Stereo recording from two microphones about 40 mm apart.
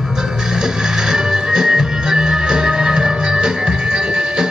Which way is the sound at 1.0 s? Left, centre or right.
Centre.